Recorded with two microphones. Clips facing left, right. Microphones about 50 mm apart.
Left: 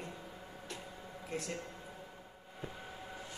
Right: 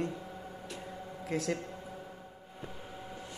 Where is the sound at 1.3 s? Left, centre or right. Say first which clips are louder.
Right 8 dB; right.